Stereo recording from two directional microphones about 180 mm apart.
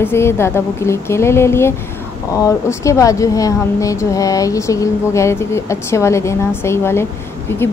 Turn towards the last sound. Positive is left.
turn(degrees=15)  # may be behind; listen again after turning